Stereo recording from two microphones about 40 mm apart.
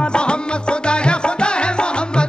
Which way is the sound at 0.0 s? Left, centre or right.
Left.